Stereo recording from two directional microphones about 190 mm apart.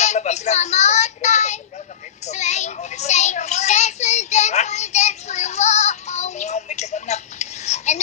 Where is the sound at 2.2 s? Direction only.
35° left (ahead or behind).